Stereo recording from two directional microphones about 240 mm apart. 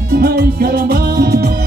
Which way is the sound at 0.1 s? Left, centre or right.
Right.